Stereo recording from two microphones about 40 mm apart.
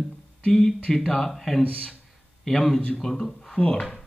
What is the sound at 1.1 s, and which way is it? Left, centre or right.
A man's voice, centre.